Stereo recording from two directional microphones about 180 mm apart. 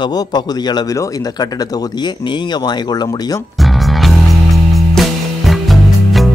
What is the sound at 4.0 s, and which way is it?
Music, centre (ahead or behind).